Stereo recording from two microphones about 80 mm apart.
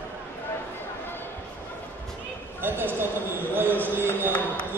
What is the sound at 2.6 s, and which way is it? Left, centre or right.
Speech, right.